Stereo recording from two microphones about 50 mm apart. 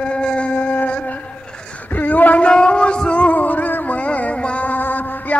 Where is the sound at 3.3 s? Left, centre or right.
Left.